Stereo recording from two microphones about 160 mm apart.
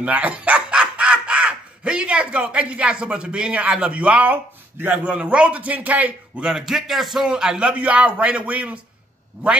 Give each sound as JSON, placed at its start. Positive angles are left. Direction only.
{"t": 0.0, "sound": "speech", "side_deg": -10}